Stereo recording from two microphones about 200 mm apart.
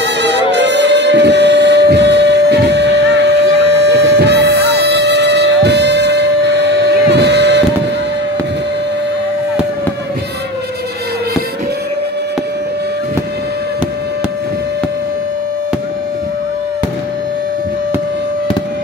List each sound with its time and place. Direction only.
0.0 s music: 60° right (ahead or behind)